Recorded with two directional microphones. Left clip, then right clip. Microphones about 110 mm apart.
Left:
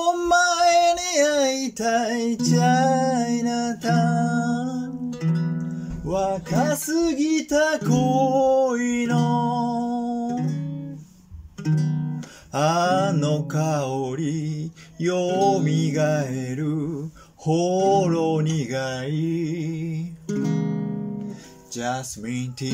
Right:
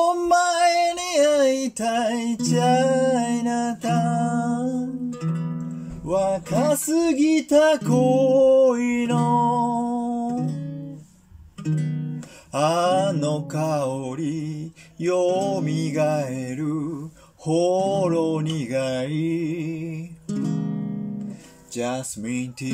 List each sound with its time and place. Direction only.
0.0 s child singing: 15° right (ahead or behind)
5.2 s music: 5° left (ahead or behind)
6.0 s music: 20° right (ahead or behind)
12.5 s mantra: 10° right (ahead or behind)
15.5 s music: 10° right (ahead or behind)
17.5 s mantra: 10° right (ahead or behind)
21.7 s speech: 25° right (ahead or behind)